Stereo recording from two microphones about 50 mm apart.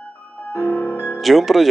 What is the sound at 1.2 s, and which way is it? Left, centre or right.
Speech, centre.